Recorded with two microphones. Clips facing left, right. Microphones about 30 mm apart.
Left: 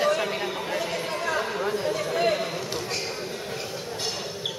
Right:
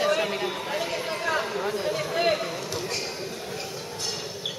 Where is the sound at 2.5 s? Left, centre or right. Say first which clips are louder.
Left 1 dB; centre.